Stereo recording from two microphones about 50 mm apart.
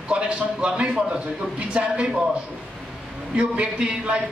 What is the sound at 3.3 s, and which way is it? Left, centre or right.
Speech, right.